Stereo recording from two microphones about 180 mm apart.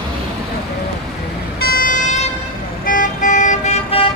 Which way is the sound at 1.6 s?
55° left (ahead or behind).